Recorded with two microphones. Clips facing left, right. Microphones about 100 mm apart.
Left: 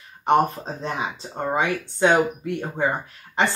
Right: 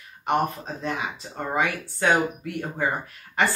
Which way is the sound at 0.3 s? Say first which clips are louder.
Left 5 dB; 30° left (ahead or behind).